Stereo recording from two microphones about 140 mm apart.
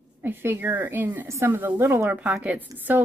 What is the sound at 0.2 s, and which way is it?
A woman's voice, 15° right (ahead or behind).